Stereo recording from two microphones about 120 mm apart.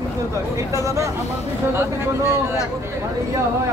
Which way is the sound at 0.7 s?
25° right (ahead or behind).